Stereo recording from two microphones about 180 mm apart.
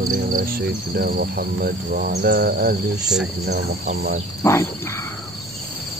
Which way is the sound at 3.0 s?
5° right (ahead or behind).